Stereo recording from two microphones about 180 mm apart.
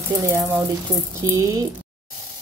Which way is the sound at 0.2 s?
15° right (ahead or behind).